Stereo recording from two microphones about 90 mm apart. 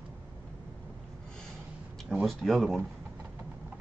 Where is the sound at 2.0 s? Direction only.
Centre (ahead or behind).